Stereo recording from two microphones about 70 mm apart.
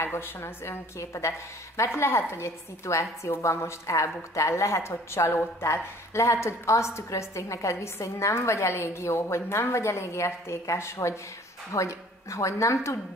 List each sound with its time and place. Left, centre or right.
0.0 s a woman's voice: left